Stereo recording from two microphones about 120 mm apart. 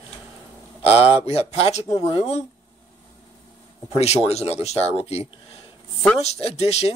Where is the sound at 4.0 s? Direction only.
60° left (ahead or behind).